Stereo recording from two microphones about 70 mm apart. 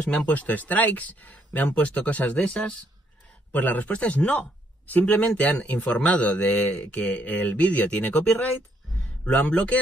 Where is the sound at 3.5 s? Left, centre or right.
Left.